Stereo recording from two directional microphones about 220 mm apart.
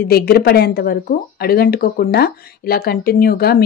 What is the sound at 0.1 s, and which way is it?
Speech, 45° left (ahead or behind).